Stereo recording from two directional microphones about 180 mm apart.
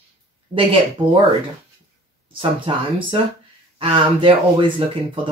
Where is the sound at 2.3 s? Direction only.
30° right (ahead or behind).